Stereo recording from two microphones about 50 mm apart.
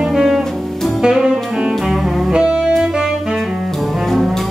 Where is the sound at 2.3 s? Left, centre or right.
Centre.